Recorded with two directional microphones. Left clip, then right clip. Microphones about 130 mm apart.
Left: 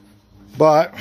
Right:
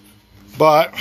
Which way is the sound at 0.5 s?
50° left (ahead or behind).